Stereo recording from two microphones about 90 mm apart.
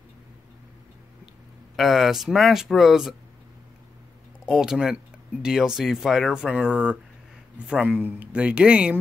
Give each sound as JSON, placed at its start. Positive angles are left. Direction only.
{"t": 1.8, "sound": "speech", "side_deg": 0}
{"t": 4.5, "sound": "speech", "side_deg": -5}